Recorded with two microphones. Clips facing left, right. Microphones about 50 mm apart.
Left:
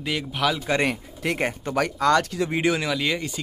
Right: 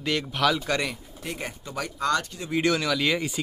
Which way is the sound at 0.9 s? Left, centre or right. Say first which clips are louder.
Left 9 dB; left.